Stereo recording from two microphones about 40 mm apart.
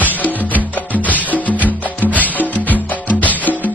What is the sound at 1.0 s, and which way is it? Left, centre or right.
Music, left.